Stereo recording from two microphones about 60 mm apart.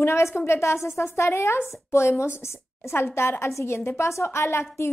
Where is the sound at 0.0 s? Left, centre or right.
Left.